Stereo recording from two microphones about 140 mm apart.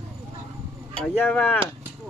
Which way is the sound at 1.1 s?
10° left (ahead or behind).